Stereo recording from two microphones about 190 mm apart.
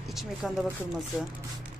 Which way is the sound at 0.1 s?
Centre (ahead or behind).